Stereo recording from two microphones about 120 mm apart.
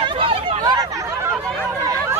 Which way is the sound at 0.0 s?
45° right (ahead or behind).